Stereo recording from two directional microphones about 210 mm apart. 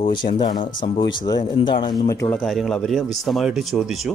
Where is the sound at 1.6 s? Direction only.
20° left (ahead or behind).